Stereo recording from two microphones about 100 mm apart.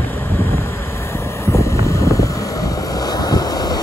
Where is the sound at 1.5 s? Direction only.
30° left (ahead or behind).